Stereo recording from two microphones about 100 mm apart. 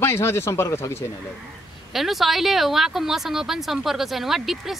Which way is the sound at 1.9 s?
Centre (ahead or behind).